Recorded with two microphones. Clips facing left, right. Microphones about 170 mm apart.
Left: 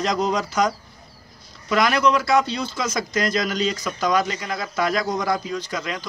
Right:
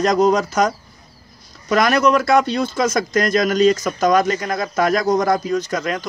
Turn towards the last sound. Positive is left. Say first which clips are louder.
# right 6 dB
turn(degrees=-50)  # may be behind; listen again after turning